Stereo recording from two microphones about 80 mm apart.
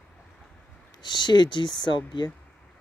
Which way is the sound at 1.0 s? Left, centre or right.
Left.